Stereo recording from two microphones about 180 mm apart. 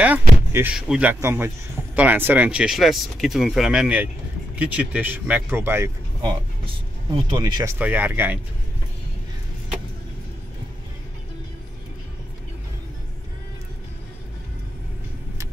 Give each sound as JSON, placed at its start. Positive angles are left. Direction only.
{"t": 0.0, "sound": "speech", "side_deg": -10}
{"t": 6.6, "sound": "speech", "side_deg": -30}
{"t": 7.8, "sound": "speech", "side_deg": -10}